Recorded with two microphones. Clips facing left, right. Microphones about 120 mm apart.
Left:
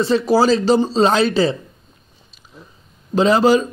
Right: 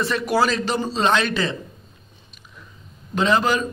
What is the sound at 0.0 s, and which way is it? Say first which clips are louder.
Speech: left 6 dB; 30° left (ahead or behind).